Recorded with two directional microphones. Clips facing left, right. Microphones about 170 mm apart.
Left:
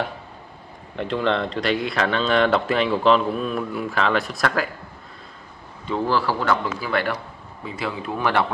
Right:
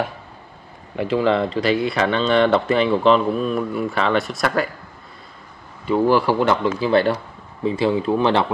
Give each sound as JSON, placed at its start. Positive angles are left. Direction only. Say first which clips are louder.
{"t": 0.9, "sound": "a man's voice", "louder": "right 4 dB", "side_deg": -5}
{"t": 5.9, "sound": "speech", "louder": "right 6 dB", "side_deg": -10}